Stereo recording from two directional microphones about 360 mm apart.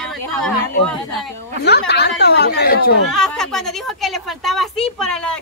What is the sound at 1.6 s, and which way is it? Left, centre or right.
Speech, left.